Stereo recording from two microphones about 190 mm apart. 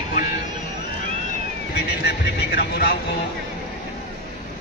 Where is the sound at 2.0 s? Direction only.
55° left (ahead or behind).